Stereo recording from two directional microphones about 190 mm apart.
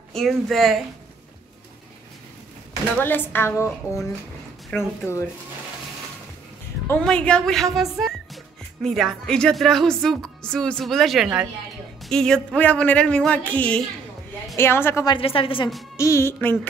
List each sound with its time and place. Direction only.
0.1 s a woman's voice: centre (ahead or behind)
3.0 s speech: 10° left (ahead or behind)
6.9 s a woman's voice: 5° left (ahead or behind)
15.1 s a woman's voice: 30° left (ahead or behind)
16.0 s speech: 15° left (ahead or behind)